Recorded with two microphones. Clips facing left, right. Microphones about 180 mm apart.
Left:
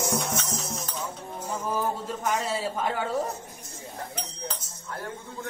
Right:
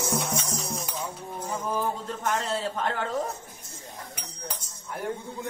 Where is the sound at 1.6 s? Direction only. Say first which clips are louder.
Left 1 dB; 5° left (ahead or behind).